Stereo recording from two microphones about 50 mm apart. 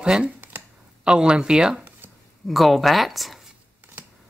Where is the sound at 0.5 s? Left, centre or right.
Right.